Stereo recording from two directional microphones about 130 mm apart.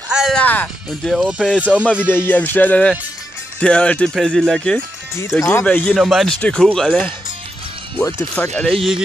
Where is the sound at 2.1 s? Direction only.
15° left (ahead or behind).